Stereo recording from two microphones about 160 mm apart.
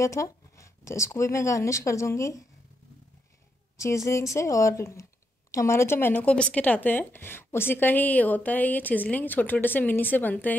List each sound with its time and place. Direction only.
0.0 s speech: 20° left (ahead or behind)
3.7 s speech: 20° left (ahead or behind)